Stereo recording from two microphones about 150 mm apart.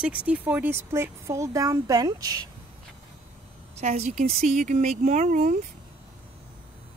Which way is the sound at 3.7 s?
45° right (ahead or behind).